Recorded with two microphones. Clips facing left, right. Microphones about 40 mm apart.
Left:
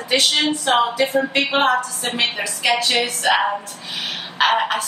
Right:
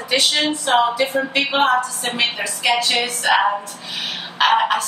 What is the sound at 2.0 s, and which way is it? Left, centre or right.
A woman's voice, centre.